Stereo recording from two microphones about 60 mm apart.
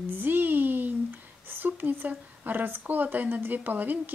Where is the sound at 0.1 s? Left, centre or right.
Right.